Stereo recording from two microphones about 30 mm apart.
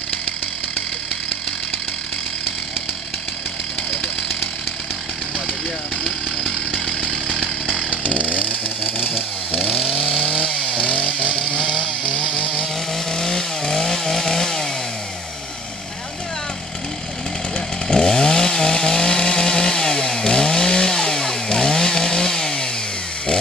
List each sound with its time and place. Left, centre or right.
8.1 s chainsaw: left
9.6 s chainsaw: centre
11.4 s chainsaw: left
13.1 s chainsaw: centre
17.8 s chainsaw: left